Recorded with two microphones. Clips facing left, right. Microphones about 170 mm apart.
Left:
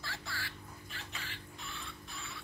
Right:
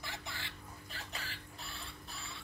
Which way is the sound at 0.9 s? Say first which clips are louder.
Right 1 dB; 35° right (ahead or behind).